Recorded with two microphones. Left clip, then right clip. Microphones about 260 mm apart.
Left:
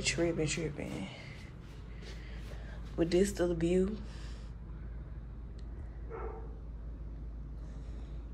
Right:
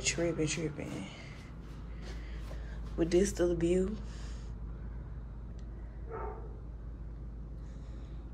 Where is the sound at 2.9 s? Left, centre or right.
Centre.